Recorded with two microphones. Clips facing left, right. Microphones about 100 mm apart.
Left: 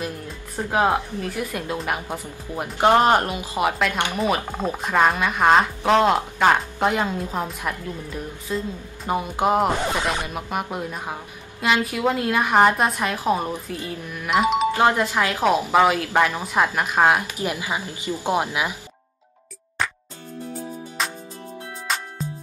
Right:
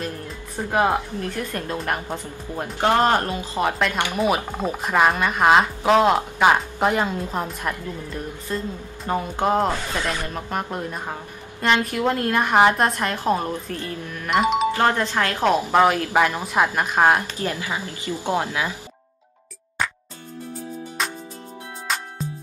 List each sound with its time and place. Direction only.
0.7 s a woman's voice: 5° left (ahead or behind)
4.6 s a woman's voice: centre (ahead or behind)
14.7 s a woman's voice: 15° left (ahead or behind)
16.1 s a woman's voice: 15° right (ahead or behind)
16.7 s speech: centre (ahead or behind)
17.3 s a woman's voice: 15° left (ahead or behind)
21.0 s music: centre (ahead or behind)